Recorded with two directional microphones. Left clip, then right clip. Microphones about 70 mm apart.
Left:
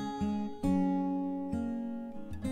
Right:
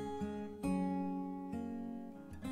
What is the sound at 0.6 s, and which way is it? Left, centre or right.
Music, centre.